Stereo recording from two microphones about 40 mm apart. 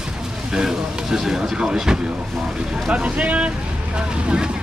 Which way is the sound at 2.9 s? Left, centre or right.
Right.